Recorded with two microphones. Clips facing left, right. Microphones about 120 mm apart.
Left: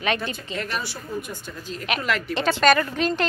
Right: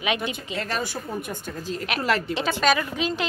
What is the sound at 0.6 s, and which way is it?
Speech, 40° right (ahead or behind).